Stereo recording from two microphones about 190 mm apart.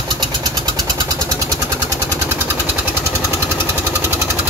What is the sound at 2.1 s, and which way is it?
Jackhammer, 10° right (ahead or behind).